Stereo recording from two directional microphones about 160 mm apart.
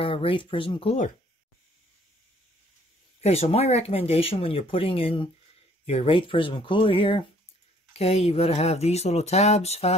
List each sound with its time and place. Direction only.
0.0 s speech: 35° left (ahead or behind)
3.2 s speech: 40° left (ahead or behind)